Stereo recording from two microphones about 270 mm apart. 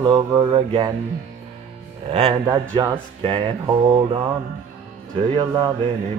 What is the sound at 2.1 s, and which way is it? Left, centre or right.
Music, right.